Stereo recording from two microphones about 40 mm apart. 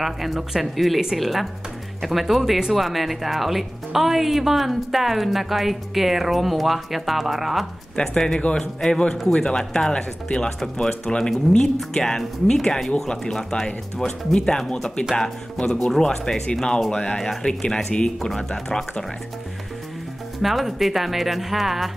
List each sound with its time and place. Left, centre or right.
0.0 s a woman's voice: centre
7.9 s speech: left
16.9 s speech: left
20.4 s a woman's voice: centre